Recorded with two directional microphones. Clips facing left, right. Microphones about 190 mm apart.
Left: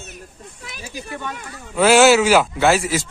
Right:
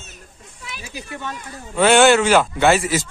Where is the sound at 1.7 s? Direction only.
Centre (ahead or behind).